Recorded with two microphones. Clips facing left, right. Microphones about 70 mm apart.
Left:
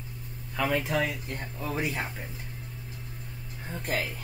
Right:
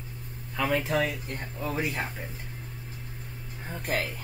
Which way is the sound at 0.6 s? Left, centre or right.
Centre.